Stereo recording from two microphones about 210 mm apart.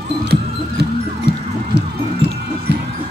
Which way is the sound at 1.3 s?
50° right (ahead or behind).